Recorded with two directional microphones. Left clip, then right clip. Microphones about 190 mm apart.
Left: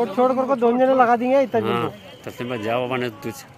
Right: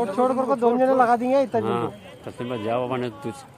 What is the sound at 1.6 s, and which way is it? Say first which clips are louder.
A man's voice: left 2 dB; centre (ahead or behind).